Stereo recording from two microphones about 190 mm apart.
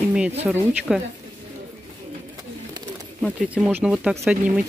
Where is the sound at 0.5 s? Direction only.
Centre (ahead or behind).